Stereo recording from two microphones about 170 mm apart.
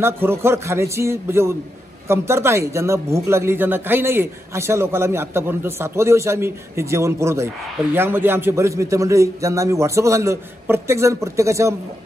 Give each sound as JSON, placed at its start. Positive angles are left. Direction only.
{"t": 0.0, "sound": "a man's voice", "side_deg": -15}